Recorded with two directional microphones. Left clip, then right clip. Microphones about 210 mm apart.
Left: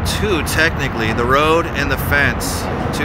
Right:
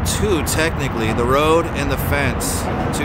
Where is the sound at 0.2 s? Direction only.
10° right (ahead or behind).